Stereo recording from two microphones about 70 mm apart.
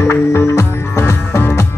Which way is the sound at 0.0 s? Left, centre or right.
Left.